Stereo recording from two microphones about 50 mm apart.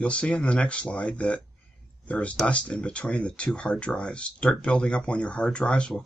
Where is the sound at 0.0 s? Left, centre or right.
Left.